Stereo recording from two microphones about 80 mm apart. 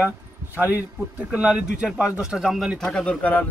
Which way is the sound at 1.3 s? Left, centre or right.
Centre.